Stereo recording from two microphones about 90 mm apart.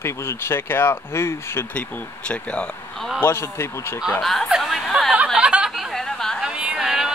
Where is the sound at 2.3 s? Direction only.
10° left (ahead or behind).